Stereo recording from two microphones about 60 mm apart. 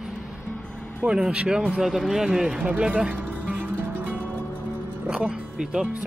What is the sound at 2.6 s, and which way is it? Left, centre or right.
Speech, right.